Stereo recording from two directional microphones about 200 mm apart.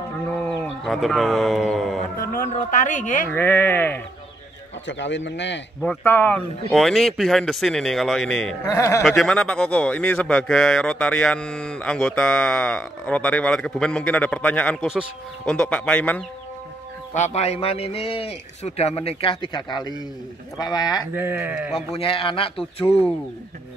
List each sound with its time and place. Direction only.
0.3 s speech: 5° left (ahead or behind)
2.1 s speech: 45° left (ahead or behind)
3.3 s speech: 10° left (ahead or behind)
4.8 s a man's voice: 65° left (ahead or behind)
5.8 s speech: 5° left (ahead or behind)
8.6 s speech: 15° left (ahead or behind)
9.0 s speech: centre (ahead or behind)
17.1 s a man's voice: 35° left (ahead or behind); by 21.1 s 20° left (ahead or behind)
21.1 s speech: 10° right (ahead or behind)
21.7 s a man's voice: 30° left (ahead or behind)